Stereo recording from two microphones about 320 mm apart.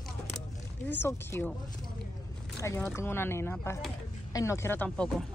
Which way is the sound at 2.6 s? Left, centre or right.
Centre.